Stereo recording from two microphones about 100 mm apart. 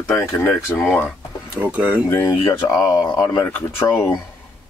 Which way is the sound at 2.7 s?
40° left (ahead or behind).